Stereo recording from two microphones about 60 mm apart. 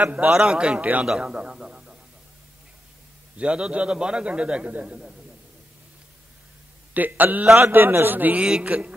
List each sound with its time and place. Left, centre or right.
0.0 s a man's voice: right
0.3 s a man's voice: centre
3.3 s a man's voice: centre
6.9 s a man's voice: right
8.4 s a man's voice: centre